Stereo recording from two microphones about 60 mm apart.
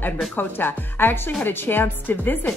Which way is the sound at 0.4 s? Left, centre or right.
Left.